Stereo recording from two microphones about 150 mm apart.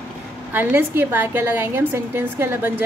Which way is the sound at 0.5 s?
15° right (ahead or behind).